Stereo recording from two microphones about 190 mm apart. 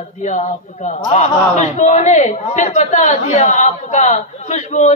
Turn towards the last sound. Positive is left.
turn(degrees=35)  # may be behind; listen again after turning